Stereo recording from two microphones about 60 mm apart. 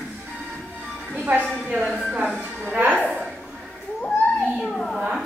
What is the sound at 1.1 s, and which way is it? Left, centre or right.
Music, right.